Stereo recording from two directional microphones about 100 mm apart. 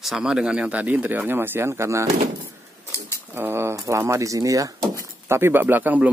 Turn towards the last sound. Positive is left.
turn(degrees=-15)  # may be behind; listen again after turning